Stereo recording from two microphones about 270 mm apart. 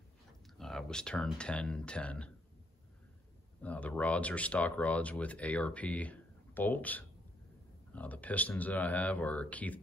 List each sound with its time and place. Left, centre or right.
0.6 s speech: centre
3.6 s speech: centre